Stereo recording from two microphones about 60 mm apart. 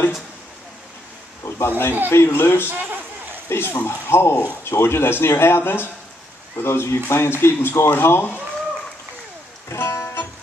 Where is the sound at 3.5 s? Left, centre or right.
Left.